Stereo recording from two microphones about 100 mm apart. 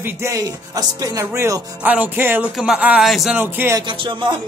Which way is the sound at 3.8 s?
55° right (ahead or behind).